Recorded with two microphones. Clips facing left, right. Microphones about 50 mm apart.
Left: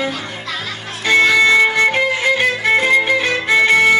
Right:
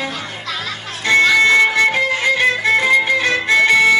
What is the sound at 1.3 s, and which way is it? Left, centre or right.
Music, centre.